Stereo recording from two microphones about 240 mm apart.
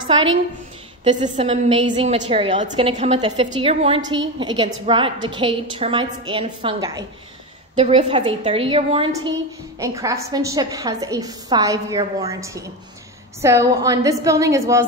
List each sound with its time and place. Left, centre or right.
1.0 s a woman's voice: right